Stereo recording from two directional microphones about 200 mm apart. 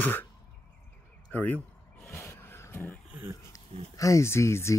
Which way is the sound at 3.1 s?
10° right (ahead or behind).